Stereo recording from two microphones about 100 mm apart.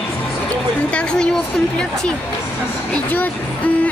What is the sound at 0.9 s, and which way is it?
Speech, 10° left (ahead or behind).